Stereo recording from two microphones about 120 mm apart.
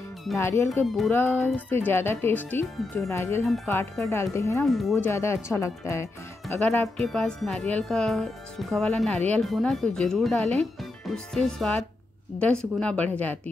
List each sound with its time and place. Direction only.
0.4 s speech: 20° left (ahead or behind)
0.8 s speech: centre (ahead or behind)
1.1 s speech: 15° left (ahead or behind)
4.6 s speech: centre (ahead or behind)
5.0 s speech: 20° left (ahead or behind)
7.0 s speech: 5° left (ahead or behind)